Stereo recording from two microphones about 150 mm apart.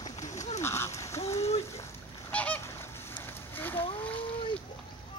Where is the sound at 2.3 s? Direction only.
10° left (ahead or behind).